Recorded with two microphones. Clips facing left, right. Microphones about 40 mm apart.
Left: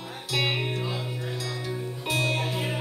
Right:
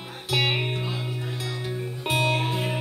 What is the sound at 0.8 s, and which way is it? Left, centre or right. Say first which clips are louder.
Music: even; centre.